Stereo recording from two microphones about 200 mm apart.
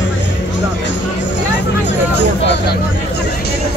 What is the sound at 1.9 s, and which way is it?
Hubbub, 60° left (ahead or behind).